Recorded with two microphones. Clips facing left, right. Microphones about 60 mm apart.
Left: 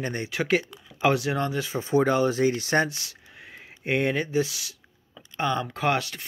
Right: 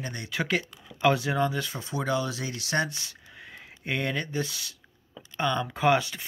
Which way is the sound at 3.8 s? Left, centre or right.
Left.